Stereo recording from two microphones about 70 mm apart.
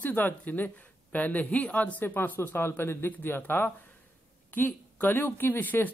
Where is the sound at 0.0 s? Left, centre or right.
Left.